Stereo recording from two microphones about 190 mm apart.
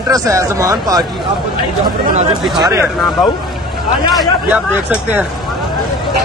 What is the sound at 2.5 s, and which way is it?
Speech, 20° right (ahead or behind).